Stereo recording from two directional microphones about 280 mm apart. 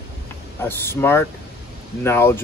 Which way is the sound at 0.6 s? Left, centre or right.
Centre.